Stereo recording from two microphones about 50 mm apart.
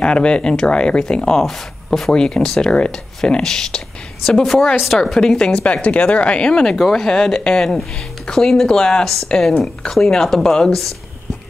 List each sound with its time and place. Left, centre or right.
0.0 s speech: centre